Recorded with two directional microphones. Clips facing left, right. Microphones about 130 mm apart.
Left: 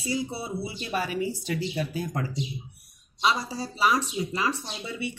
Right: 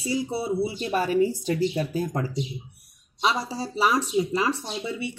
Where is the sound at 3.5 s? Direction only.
30° right (ahead or behind).